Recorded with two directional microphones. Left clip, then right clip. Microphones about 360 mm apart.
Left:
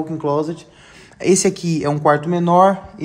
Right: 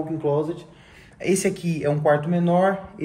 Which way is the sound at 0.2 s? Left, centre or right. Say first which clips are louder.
Left 4 dB; left.